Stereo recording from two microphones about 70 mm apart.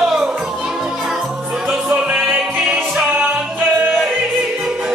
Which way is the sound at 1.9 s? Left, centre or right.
Centre.